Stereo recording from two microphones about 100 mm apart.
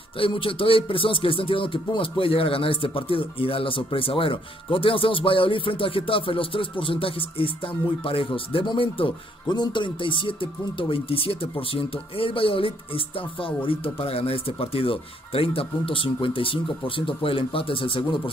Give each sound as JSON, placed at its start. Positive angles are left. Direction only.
{"t": 0.2, "sound": "speech", "side_deg": 65}
{"t": 9.5, "sound": "speech", "side_deg": 50}